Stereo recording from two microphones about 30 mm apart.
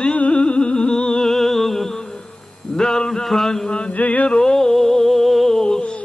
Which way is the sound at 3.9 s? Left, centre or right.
Left.